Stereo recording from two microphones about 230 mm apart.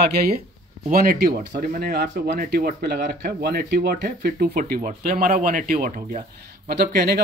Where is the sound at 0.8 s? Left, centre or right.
Right.